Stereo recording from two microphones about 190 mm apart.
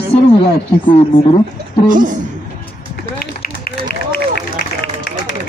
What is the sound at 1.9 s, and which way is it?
Speech, 45° right (ahead or behind).